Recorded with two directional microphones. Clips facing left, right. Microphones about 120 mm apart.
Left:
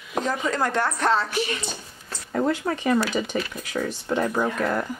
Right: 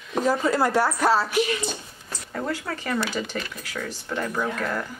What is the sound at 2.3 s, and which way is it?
Speech, 20° left (ahead or behind).